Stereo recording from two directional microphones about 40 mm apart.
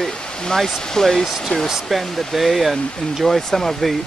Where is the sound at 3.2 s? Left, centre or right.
Centre.